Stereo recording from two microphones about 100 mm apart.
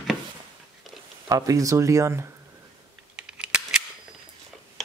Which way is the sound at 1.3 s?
35° right (ahead or behind).